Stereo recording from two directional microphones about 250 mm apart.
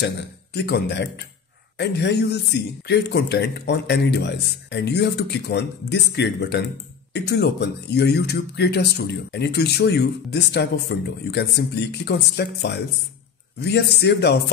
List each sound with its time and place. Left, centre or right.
0.0 s a man's voice: left